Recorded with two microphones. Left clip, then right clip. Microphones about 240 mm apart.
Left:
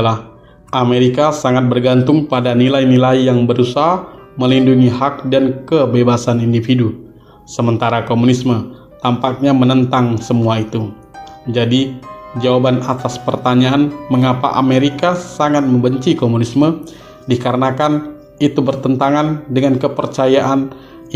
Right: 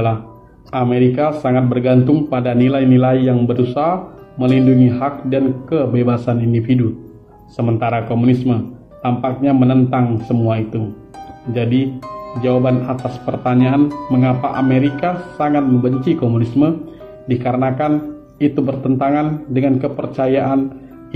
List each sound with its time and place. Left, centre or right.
0.7 s speech: left